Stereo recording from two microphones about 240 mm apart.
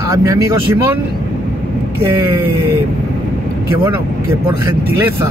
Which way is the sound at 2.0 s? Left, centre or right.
Centre.